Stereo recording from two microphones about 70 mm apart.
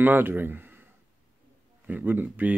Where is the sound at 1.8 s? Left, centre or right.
Right.